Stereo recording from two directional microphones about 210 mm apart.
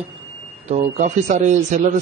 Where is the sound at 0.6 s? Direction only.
35° right (ahead or behind).